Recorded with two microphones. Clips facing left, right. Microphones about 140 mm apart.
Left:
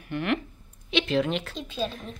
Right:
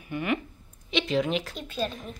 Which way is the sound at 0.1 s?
Centre (ahead or behind).